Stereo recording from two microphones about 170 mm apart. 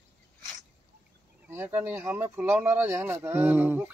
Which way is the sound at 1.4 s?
10° right (ahead or behind).